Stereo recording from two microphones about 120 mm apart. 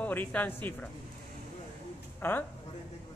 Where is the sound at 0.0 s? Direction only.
15° left (ahead or behind).